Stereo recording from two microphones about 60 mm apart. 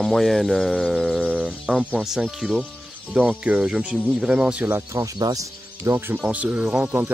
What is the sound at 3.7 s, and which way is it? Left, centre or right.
Speech, centre.